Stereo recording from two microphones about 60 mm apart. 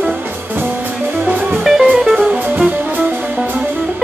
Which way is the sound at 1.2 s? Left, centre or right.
Right.